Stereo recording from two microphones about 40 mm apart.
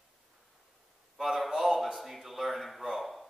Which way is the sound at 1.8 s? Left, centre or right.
Centre.